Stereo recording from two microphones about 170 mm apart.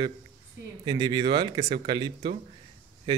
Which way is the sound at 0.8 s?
25° right (ahead or behind).